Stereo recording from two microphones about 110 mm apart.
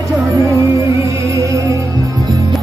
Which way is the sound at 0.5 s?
30° right (ahead or behind).